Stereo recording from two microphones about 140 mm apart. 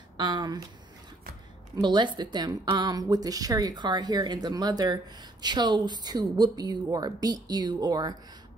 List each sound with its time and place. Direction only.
0.2 s speech: 30° right (ahead or behind)
1.8 s speech: 35° right (ahead or behind)